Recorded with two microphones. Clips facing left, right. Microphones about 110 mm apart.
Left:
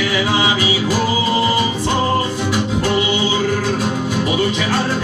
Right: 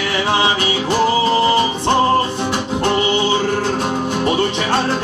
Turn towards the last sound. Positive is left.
turn(degrees=-30)  # may be behind; listen again after turning